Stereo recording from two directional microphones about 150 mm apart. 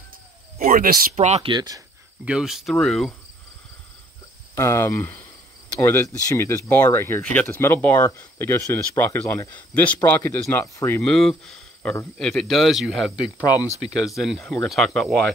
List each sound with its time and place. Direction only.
0.6 s speech: 75° right (ahead or behind)
1.1 s speech: 45° right (ahead or behind)
1.5 s speech: 30° right (ahead or behind)
2.2 s speech: 5° right (ahead or behind)
4.6 s speech: 20° left (ahead or behind)
11.0 s speech: centre (ahead or behind)